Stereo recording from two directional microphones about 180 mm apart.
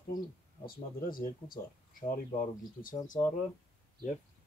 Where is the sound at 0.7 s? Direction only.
50° left (ahead or behind).